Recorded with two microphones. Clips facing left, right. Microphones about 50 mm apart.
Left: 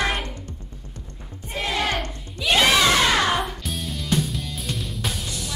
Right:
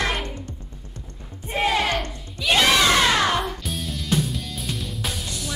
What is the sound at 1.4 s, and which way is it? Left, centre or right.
Music, centre.